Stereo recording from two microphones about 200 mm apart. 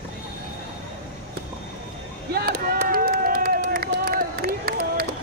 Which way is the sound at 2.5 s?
45° right (ahead or behind).